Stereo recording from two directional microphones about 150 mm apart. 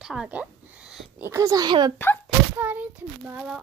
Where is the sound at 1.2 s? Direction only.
20° right (ahead or behind).